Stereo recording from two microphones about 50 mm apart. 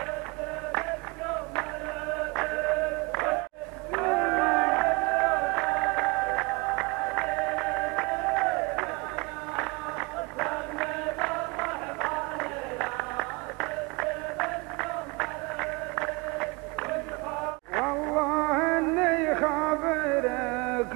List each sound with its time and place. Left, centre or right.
0.7 s music: centre
2.1 s music: centre
17.7 s music: centre